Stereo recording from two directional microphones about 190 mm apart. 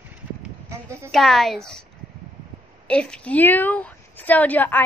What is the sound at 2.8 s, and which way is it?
A woman's voice, 5° left (ahead or behind).